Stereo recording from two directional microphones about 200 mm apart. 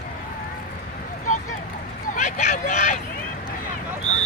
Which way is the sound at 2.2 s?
35° left (ahead or behind).